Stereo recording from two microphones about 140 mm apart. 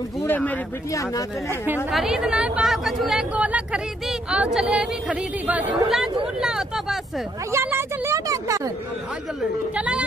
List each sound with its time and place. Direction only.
0.2 s speech: 10° left (ahead or behind)
1.9 s a woman's voice: centre (ahead or behind)
7.5 s a woman's voice: 15° right (ahead or behind)
9.8 s a woman's voice: 10° right (ahead or behind)